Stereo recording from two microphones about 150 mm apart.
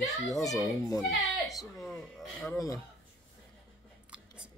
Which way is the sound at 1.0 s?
Centre (ahead or behind).